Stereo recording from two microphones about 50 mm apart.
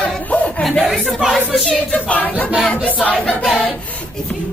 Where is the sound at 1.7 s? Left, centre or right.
Centre.